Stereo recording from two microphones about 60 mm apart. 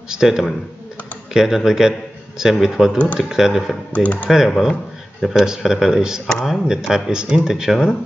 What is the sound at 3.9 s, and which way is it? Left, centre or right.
Speech, left.